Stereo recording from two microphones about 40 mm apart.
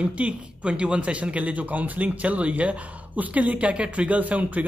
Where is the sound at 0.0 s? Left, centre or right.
Right.